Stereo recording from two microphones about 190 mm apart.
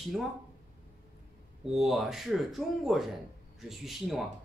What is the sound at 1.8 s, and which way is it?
Speech, centre (ahead or behind).